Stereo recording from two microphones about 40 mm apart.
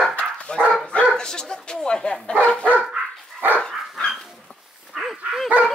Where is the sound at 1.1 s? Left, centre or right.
Centre.